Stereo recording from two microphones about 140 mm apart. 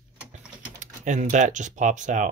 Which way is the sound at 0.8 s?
60° right (ahead or behind).